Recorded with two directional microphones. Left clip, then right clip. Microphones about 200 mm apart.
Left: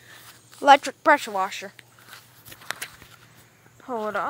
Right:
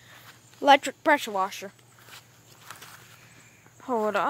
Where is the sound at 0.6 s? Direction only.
5° right (ahead or behind).